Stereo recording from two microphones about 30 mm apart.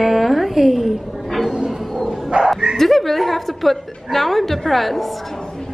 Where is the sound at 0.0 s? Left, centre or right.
Centre.